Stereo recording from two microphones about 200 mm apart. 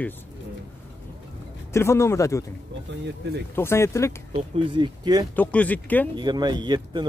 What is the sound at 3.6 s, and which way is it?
Speech, 10° left (ahead or behind).